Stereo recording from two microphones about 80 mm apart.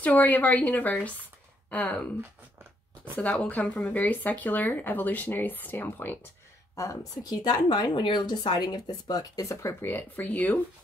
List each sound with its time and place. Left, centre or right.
0.0 s speech: centre
3.4 s speech: centre
6.7 s speech: left